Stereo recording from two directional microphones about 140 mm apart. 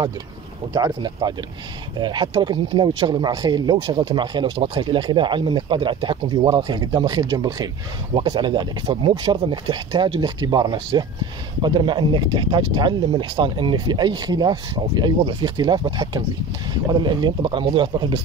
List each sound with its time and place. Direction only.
0.7 s speech: 30° right (ahead or behind)